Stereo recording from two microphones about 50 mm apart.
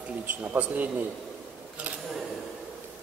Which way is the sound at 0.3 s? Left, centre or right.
Right.